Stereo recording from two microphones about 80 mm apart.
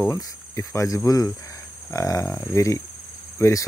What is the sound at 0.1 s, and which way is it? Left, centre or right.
Speech, left.